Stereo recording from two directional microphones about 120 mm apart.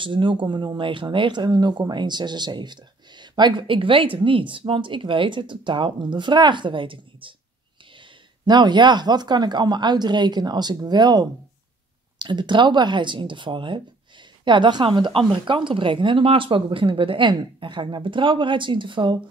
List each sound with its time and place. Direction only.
0.0 s speech: 45° right (ahead or behind)
8.5 s speech: 40° right (ahead or behind)